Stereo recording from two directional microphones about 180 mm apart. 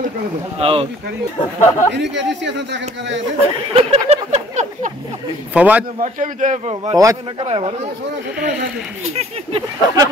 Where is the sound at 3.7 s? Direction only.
35° right (ahead or behind).